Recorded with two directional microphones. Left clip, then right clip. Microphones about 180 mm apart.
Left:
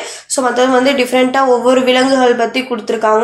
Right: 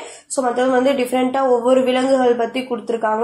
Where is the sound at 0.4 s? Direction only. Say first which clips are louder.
Left 5 dB; 45° right (ahead or behind).